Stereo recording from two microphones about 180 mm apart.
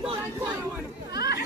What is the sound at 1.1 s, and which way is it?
Chatter, 65° left (ahead or behind).